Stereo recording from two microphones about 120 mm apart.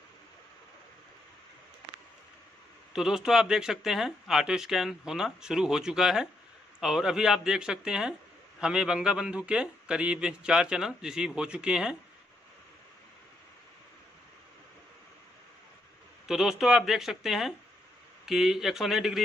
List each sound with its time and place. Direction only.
2.9 s a man's voice: 5° right (ahead or behind)
16.3 s speech: 5° right (ahead or behind)